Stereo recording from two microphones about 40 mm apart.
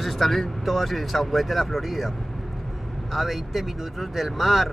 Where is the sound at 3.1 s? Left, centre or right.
Centre.